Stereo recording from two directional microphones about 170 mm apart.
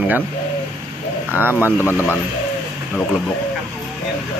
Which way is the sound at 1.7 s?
10° left (ahead or behind).